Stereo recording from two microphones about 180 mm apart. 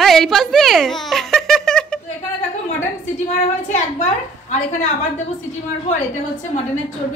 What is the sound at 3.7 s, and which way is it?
A woman's voice, 40° left (ahead or behind).